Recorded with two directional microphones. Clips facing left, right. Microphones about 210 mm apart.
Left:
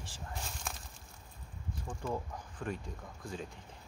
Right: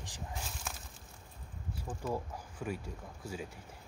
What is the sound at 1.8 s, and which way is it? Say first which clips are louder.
Speech: right 1 dB; 5° right (ahead or behind).